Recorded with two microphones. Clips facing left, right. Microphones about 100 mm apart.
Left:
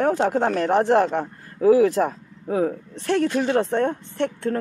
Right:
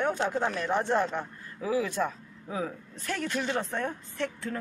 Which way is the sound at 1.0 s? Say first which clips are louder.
Left 8 dB; 40° left (ahead or behind).